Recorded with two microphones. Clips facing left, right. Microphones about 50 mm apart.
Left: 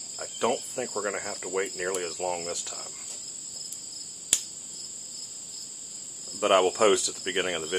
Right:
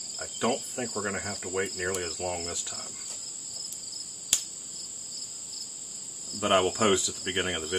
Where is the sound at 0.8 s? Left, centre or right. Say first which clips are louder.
Left 2 dB; centre.